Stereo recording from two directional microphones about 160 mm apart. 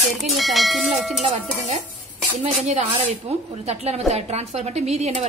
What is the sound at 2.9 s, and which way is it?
A woman's voice, 40° right (ahead or behind).